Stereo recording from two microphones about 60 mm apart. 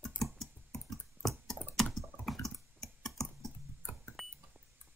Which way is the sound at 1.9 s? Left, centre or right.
Centre.